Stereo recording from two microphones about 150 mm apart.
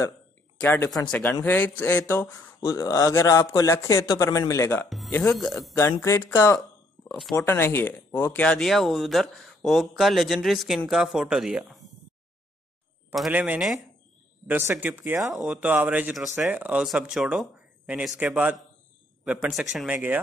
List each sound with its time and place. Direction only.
0.6 s speech: 10° left (ahead or behind)
0.8 s speech: 25° left (ahead or behind)
1.4 s speech: 10° left (ahead or behind)
4.8 s music: centre (ahead or behind)
5.1 s speech: 5° left (ahead or behind)
5.8 s speech: 15° left (ahead or behind); by 11.8 s 5° right (ahead or behind)
13.3 s speech: 10° right (ahead or behind)
15.3 s speech: centre (ahead or behind)